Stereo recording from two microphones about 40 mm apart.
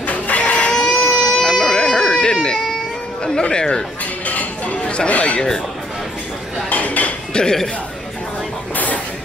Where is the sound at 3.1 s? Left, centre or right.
Centre.